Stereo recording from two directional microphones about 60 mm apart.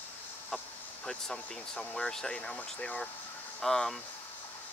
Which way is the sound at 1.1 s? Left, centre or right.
Centre.